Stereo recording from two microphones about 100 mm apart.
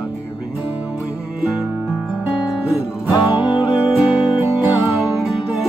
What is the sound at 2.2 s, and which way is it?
Guitar, 10° right (ahead or behind).